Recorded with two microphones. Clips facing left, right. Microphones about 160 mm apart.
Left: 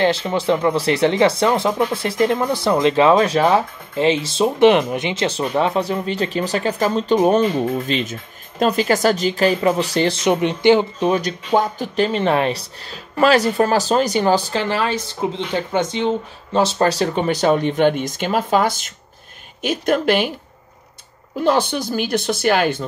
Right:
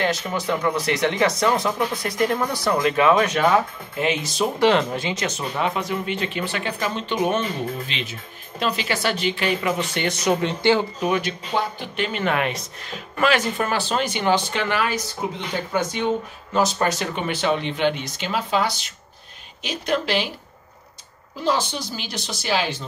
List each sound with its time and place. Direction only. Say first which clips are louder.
0.0 s speech: left 6 dB; 30° left (ahead or behind)
11.1 s speech: left 5 dB; 40° left (ahead or behind)
21.5 s speech: left 5 dB; 55° left (ahead or behind)